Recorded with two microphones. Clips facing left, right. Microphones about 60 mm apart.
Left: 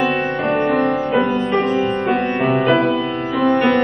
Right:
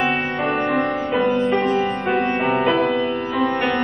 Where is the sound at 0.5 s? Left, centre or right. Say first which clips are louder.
Left 4 dB; centre.